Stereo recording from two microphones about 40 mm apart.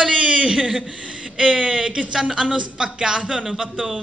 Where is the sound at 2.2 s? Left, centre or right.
Centre.